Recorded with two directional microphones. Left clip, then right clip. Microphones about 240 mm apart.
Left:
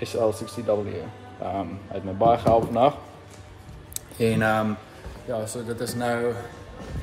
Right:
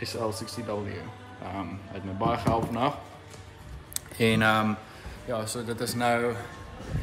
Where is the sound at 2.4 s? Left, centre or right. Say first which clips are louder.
Left 8 dB; centre.